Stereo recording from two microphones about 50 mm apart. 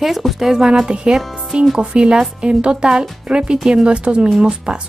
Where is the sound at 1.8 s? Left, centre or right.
Right.